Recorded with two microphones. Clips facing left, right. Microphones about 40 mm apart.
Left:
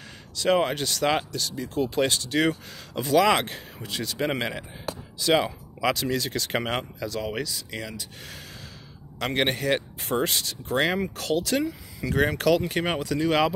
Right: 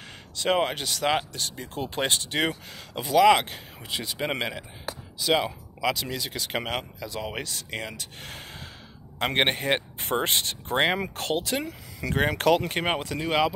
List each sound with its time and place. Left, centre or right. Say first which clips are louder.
0.4 s speech: left 2 dB; centre
1.3 s speech: left 4 dB; right
2.4 s speech: left 3 dB; centre
3.2 s speech: right 3 dB; centre
3.8 s speech: left 2 dB; centre
5.2 s speech: left 2 dB; centre
6.6 s speech: left 3 dB; centre
7.1 s speech: left 4 dB; centre
7.4 s speech: even; right